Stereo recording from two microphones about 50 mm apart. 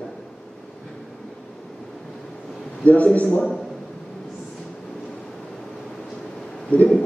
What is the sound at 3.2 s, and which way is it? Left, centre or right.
Speech, centre.